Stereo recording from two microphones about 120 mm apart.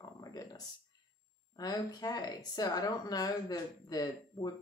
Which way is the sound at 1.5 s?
30° left (ahead or behind).